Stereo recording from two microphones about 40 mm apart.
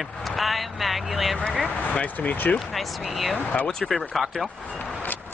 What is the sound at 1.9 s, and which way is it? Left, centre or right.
Speech, left.